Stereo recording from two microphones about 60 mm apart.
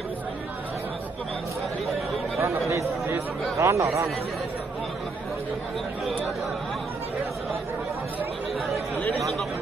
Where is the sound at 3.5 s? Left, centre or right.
Right.